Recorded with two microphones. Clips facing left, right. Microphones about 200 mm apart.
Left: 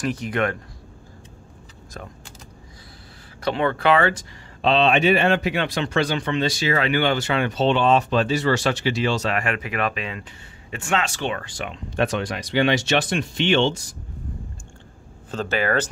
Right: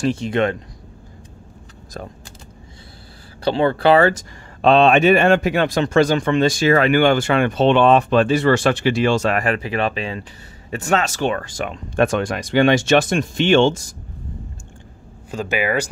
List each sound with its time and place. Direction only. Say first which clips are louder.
0.0 s speech: right 5 dB; 25° right (ahead or behind)
2.0 s speech: right 5 dB; 35° right (ahead or behind)
3.4 s speech: right 5 dB; 30° right (ahead or behind); by 13.8 s 45° right (ahead or behind)
15.3 s speech: right 1 dB; 10° right (ahead or behind)